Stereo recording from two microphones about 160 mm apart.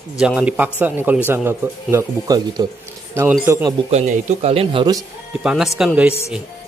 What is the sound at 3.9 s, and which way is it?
Speech, 45° right (ahead or behind).